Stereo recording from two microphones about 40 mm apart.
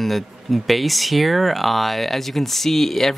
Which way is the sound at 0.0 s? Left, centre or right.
Centre.